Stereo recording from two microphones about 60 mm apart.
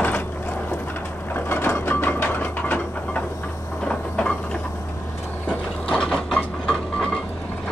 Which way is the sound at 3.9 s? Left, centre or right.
Centre.